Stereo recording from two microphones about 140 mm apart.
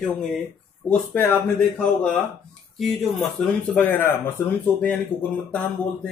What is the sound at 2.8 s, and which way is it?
Speech, centre (ahead or behind).